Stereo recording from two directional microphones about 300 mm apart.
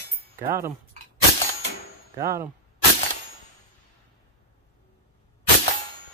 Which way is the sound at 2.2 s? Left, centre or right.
Centre.